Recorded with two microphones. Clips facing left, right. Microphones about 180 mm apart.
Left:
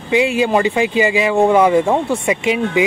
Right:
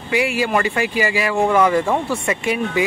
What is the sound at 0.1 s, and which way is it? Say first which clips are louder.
Speech: left 4 dB; 20° left (ahead or behind).